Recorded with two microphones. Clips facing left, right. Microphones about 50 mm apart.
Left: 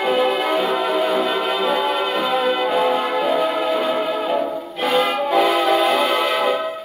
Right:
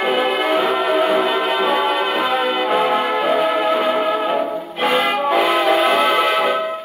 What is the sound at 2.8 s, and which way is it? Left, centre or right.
Brass instrument, right.